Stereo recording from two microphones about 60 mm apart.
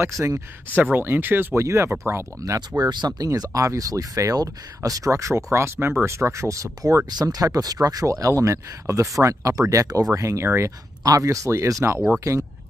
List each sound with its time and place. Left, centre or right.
0.2 s speech: right
1.6 s speech: right
2.8 s speech: right
3.5 s speech: right
7.2 s speech: right
10.1 s speech: right
11.1 s speech: right